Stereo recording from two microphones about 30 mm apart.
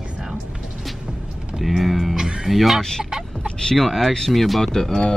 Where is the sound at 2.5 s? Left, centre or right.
Centre.